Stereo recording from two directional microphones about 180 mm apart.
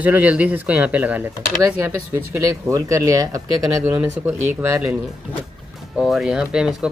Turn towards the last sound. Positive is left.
turn(degrees=-5)  # may be behind; listen again after turning